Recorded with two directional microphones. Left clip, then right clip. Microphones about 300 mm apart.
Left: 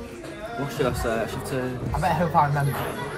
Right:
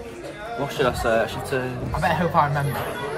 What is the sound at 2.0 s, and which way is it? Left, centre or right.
Speech, centre.